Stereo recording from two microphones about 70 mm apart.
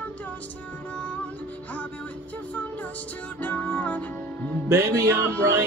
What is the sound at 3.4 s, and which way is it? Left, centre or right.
Music, left.